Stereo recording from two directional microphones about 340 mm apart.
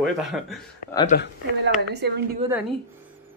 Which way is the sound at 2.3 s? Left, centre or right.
Centre.